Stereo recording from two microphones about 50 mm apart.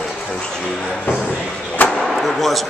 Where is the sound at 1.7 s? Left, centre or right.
Left.